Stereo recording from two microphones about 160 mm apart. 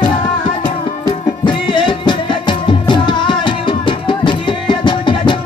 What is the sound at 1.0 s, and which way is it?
Music, 30° left (ahead or behind).